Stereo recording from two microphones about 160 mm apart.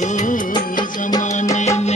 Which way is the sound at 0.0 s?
50° left (ahead or behind).